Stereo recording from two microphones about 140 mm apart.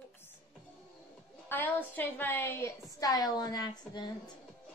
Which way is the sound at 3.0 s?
25° left (ahead or behind).